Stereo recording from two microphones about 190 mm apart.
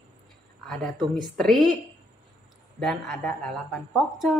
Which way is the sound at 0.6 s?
Centre (ahead or behind).